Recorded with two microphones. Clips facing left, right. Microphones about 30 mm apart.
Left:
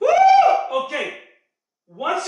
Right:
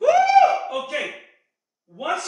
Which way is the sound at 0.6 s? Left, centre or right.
Centre.